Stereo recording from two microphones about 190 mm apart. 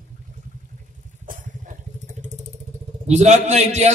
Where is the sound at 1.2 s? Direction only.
45° right (ahead or behind).